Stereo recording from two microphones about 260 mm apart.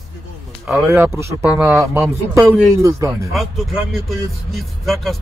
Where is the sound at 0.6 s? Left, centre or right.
Centre.